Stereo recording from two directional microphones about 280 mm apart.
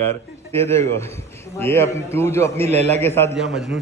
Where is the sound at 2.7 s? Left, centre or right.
Right.